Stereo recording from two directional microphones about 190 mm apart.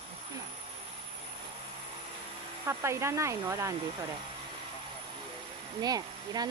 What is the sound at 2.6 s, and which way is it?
Speech, 15° right (ahead or behind).